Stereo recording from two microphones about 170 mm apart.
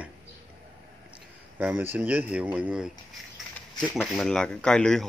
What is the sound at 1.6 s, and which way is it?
A man's voice, 10° right (ahead or behind).